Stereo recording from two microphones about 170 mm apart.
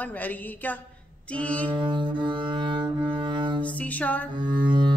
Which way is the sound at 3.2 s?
30° right (ahead or behind).